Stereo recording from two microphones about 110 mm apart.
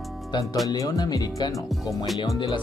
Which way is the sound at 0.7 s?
35° left (ahead or behind).